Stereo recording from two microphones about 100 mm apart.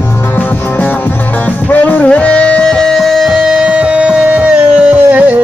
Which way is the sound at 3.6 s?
10° right (ahead or behind).